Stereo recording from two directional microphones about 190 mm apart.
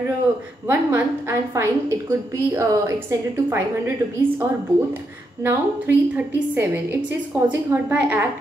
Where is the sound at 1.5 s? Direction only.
15° right (ahead or behind).